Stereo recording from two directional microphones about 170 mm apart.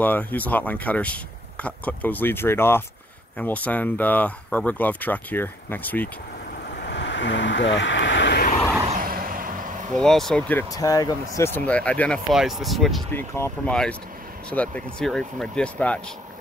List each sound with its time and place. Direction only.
0.0 s speech: 10° left (ahead or behind)
6.8 s vehicle: 90° left
9.0 s vehicle: 55° right (ahead or behind)
9.9 s speech: centre (ahead or behind)
10.7 s speech: 20° left (ahead or behind); by 13.0 s centre (ahead or behind)
13.1 s speech: 15° left (ahead or behind)